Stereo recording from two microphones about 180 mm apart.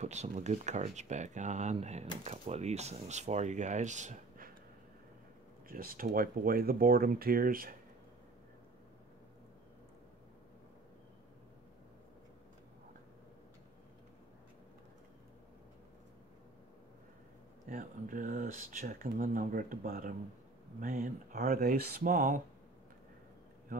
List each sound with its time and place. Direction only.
0.0 s speech: 40° right (ahead or behind)
5.7 s speech: 50° right (ahead or behind)
17.6 s speech: 50° right (ahead or behind)